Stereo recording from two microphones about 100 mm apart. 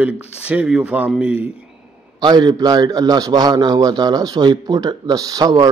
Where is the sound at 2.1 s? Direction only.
45° right (ahead or behind).